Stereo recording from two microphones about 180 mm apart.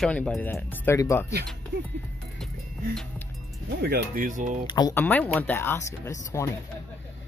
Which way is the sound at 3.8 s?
60° right (ahead or behind).